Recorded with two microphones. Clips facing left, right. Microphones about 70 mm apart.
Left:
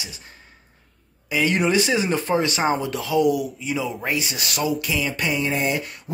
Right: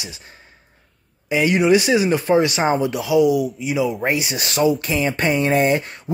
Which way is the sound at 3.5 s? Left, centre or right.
Centre.